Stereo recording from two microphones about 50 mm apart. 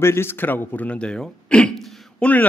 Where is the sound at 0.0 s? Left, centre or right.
Left.